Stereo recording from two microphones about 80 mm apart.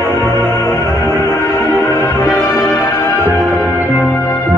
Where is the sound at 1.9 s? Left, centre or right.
Left.